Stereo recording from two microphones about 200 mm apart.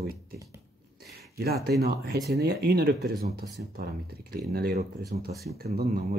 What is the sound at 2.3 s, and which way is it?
Speech, 50° right (ahead or behind).